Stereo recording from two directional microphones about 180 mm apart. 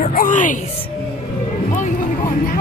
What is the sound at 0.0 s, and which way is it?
Speech, 45° left (ahead or behind).